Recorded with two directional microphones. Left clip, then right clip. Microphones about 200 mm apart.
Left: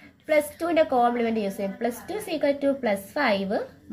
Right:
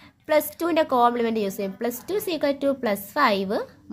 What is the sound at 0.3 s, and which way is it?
A woman's voice, 40° right (ahead or behind).